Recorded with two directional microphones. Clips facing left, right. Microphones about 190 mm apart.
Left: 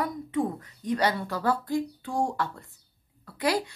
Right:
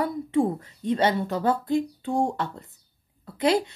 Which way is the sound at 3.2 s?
25° right (ahead or behind).